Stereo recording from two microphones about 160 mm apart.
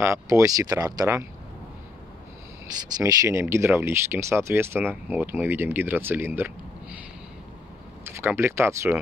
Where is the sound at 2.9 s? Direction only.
20° right (ahead or behind).